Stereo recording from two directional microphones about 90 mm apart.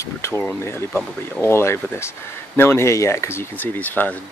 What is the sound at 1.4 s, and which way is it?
Speech, 30° left (ahead or behind).